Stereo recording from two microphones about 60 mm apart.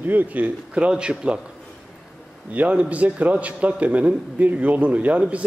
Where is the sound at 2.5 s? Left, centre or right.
Right.